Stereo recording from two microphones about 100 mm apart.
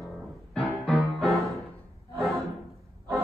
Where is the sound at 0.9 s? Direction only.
Centre (ahead or behind).